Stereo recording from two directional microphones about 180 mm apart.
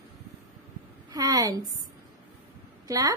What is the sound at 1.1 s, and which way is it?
Speech, 20° right (ahead or behind).